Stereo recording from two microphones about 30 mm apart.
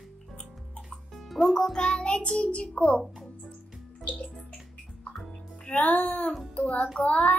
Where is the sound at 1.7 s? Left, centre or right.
Left.